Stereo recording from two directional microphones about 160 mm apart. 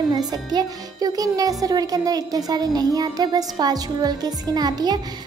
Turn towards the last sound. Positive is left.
turn(degrees=-25)  # may be behind; listen again after turning